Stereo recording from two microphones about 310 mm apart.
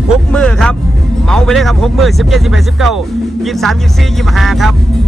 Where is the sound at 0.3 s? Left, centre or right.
Centre.